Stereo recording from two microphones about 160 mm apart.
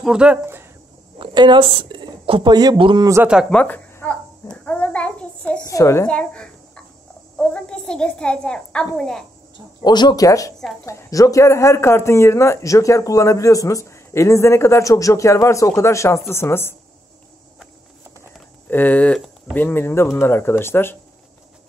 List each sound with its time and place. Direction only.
0.0 s speech: 5° right (ahead or behind)
1.1 s a woman's voice: 30° right (ahead or behind)
3.3 s speech: 5° right (ahead or behind)
3.5 s babbling: 10° left (ahead or behind)
5.7 s speech: 20° left (ahead or behind)
6.0 s a child's voice: 5° left (ahead or behind)
9.8 s a man's voice: 25° left (ahead or behind)
18.7 s a man's voice: 10° left (ahead or behind)